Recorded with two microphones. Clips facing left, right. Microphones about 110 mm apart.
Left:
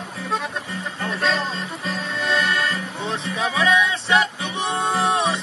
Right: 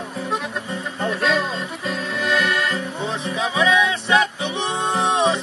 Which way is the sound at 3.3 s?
25° right (ahead or behind).